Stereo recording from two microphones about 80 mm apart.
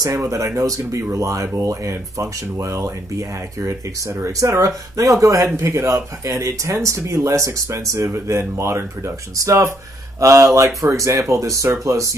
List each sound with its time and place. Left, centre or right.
0.0 s speech: right